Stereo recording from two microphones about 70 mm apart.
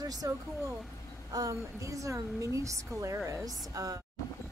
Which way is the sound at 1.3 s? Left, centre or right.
Right.